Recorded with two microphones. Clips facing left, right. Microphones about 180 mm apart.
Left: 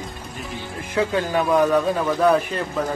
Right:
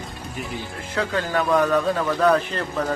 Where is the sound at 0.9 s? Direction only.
15° left (ahead or behind).